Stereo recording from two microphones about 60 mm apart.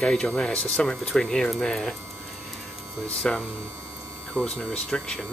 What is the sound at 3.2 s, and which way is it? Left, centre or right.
Speech, centre.